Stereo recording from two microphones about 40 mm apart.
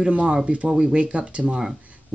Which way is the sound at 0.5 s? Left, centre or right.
Right.